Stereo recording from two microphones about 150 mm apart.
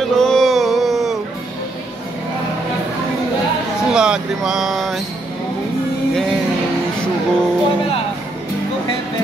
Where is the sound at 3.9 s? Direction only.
5° right (ahead or behind).